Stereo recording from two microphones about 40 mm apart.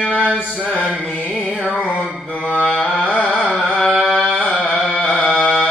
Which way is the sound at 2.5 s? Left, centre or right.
Left.